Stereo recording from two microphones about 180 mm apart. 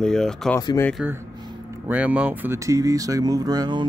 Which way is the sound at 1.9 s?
10° right (ahead or behind).